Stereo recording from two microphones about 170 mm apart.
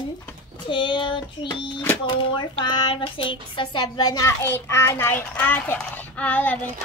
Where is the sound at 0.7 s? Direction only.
25° left (ahead or behind).